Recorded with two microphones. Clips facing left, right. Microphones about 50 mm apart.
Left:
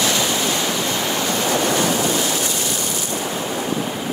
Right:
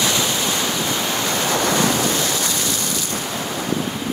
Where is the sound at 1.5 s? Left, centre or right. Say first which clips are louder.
Right 1 dB; left.